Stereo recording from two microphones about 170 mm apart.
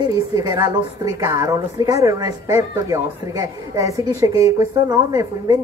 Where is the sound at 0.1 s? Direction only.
25° right (ahead or behind).